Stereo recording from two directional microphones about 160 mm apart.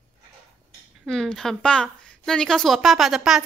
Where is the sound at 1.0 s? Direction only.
5° left (ahead or behind).